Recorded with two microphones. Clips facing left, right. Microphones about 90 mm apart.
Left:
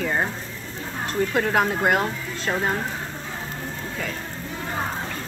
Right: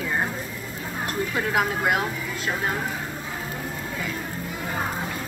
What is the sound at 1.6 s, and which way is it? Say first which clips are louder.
Speech: left 2 dB; 45° left (ahead or behind).